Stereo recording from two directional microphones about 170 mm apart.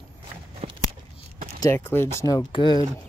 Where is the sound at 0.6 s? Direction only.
35° right (ahead or behind).